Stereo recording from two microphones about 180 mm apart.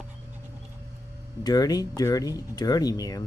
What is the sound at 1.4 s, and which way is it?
Speech, 20° left (ahead or behind).